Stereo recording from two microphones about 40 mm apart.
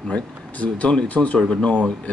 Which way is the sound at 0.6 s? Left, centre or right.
Left.